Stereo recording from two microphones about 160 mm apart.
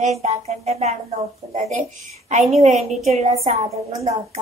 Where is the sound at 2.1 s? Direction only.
45° right (ahead or behind).